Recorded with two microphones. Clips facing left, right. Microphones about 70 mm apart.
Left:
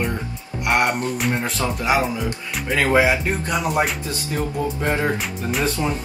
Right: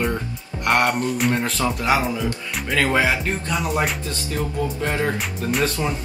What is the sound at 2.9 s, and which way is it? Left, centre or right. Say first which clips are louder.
Speech: left 3 dB; centre.